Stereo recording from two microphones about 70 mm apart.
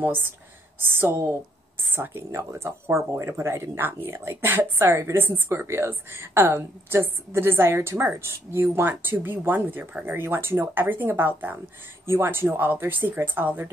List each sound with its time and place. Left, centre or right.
0.0 s a woman's voice: right